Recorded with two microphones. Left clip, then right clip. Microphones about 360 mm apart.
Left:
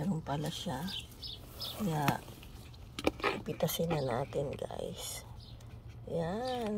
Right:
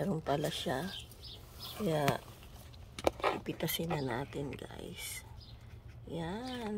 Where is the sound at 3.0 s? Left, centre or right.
Centre.